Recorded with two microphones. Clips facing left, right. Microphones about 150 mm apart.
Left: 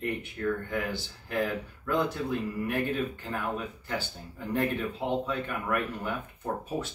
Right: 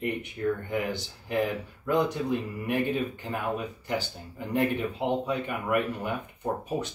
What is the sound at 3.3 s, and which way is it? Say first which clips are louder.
Speech: right 2 dB; 15° right (ahead or behind).